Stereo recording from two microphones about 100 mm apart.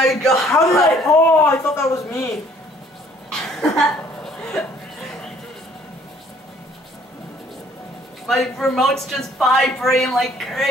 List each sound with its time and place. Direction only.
0.0 s speech: centre (ahead or behind)
1.1 s a man's voice: 20° left (ahead or behind)
3.3 s a sound: 5° left (ahead or behind)
8.3 s speech: 5° left (ahead or behind)